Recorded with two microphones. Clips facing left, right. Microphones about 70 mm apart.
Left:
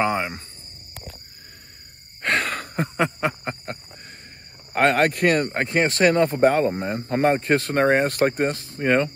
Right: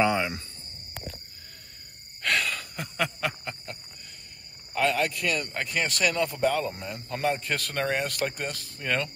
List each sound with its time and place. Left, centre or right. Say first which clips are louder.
0.0 s speech: left 2 dB; left
2.2 s a sound: left 4 dB; left
4.7 s speech: left 7 dB; left